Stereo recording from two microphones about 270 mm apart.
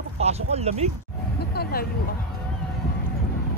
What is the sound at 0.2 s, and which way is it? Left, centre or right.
Speech, right.